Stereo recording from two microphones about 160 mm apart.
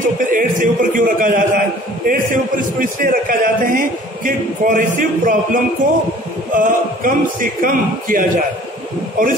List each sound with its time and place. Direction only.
0.0 s a man's voice: 55° right (ahead or behind)